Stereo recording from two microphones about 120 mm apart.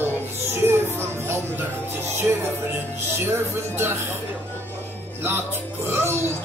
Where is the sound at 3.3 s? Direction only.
20° right (ahead or behind).